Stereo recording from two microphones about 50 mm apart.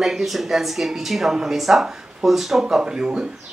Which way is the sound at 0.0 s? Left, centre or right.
Centre.